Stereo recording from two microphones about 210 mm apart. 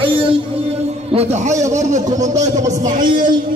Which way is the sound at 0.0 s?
25° right (ahead or behind).